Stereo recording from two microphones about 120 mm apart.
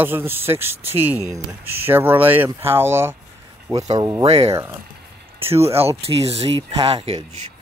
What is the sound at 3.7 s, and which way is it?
Speech, 30° right (ahead or behind).